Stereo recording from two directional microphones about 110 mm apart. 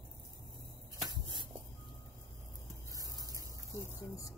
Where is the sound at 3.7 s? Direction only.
30° left (ahead or behind).